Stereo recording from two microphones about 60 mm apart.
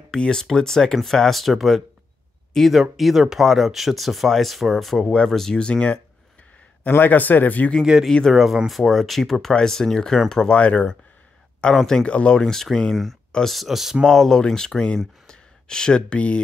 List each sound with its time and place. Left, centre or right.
0.1 s speech: centre
6.9 s speech: left
8.3 s speech: centre
10.5 s speech: centre
11.7 s speech: centre